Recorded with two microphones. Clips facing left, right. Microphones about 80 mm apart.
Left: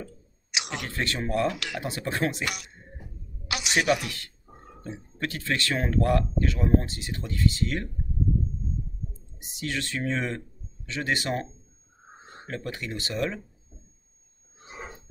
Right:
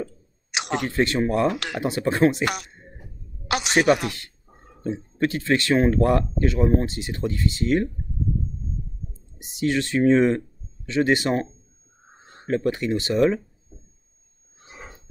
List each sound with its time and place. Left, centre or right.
0.5 s a sound: right
0.8 s speech: right
1.5 s a woman's voice: right
1.8 s speech: right
2.4 s a woman's voice: right
4.9 s speech: right
9.4 s speech: right
12.4 s speech: right